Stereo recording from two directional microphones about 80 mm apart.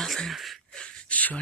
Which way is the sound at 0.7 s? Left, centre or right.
Centre.